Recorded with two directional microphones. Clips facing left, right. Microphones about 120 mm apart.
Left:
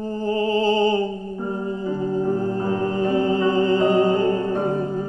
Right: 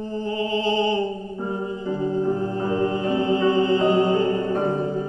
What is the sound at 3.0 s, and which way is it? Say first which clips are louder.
Music: left 1 dB; 40° left (ahead or behind).